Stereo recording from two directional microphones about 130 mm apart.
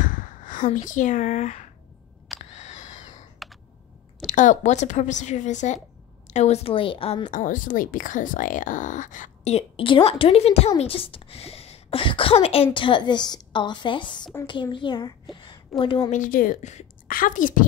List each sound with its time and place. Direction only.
0.0 s a sound: 90° left
0.7 s a woman's voice: 70° left (ahead or behind)
2.3 s camera: 65° left (ahead or behind)
4.2 s a woman's voice: 70° left (ahead or behind); by 7.2 s 45° left (ahead or behind)
7.2 s a woman's voice: 90° left; by 16.1 s 40° left (ahead or behind)
16.1 s a woman's voice: 90° left